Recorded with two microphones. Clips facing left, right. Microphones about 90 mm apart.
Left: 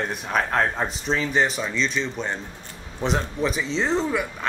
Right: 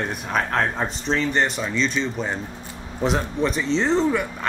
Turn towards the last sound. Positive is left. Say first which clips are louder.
# right 3 dB
turn(degrees=0)  # may be behind; listen again after turning